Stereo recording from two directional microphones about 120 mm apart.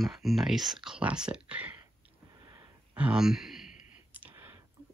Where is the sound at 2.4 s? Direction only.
30° right (ahead or behind).